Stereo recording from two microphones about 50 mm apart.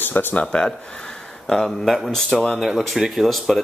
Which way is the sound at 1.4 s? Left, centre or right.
Centre.